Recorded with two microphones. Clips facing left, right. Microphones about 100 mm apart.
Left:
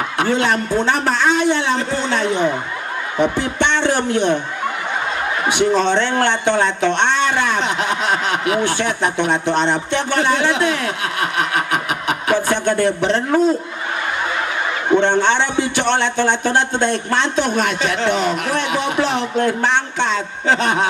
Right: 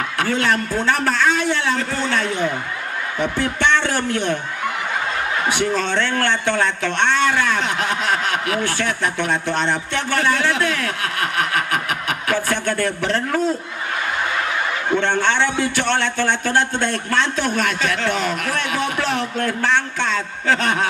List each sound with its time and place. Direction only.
0.2 s speech: 20° left (ahead or behind)
5.5 s speech: 20° left (ahead or behind)
15.0 s speech: 20° left (ahead or behind)